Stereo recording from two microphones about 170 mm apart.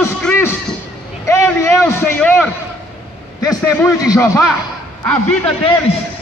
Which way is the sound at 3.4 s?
20° left (ahead or behind).